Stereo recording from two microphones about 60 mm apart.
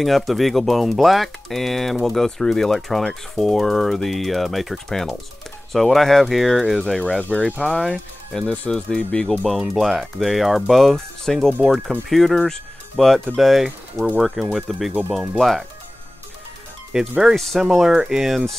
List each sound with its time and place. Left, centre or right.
0.0 s speech: centre
9.5 s speech: centre
16.9 s speech: centre